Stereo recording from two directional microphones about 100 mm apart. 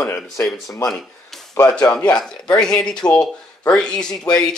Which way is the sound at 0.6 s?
35° left (ahead or behind).